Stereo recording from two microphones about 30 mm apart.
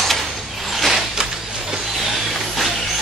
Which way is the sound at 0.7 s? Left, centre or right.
Centre.